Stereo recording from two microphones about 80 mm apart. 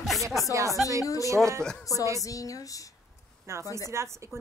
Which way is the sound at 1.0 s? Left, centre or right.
Left.